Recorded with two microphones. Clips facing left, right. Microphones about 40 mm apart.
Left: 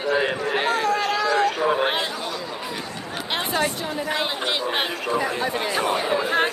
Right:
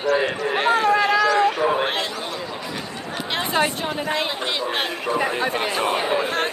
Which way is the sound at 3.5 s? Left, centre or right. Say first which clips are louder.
Right 4 dB; right.